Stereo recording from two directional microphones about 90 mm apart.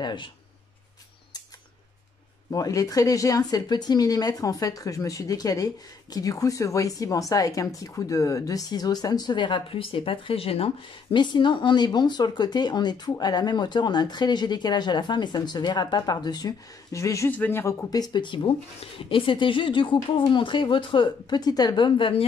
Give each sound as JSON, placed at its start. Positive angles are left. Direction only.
{"t": 0.0, "sound": "speech", "side_deg": 60}
{"t": 2.5, "sound": "speech", "side_deg": 40}
{"t": 17.3, "sound": "a man's voice", "side_deg": 20}
{"t": 17.8, "sound": "speech", "side_deg": 45}